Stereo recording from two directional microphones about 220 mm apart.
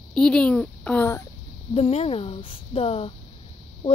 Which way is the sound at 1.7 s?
25° left (ahead or behind).